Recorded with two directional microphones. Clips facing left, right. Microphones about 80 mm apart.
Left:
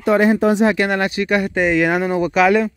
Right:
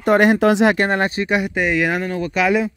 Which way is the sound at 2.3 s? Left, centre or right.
Centre.